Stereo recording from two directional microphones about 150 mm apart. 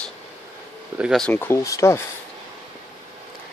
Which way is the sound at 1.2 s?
15° left (ahead or behind).